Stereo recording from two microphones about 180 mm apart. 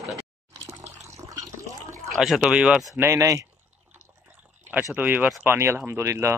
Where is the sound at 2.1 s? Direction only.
Centre (ahead or behind); by 3.5 s 15° right (ahead or behind).